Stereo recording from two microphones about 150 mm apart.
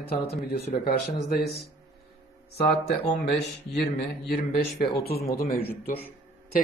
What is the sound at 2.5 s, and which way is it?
Speech, 90° left.